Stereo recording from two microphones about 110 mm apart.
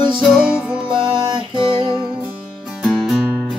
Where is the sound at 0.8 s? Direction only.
45° right (ahead or behind).